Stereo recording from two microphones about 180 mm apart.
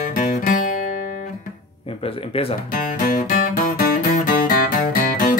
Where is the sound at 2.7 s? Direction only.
45° left (ahead or behind).